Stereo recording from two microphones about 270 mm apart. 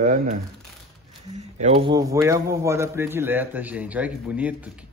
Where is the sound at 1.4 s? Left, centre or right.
Right.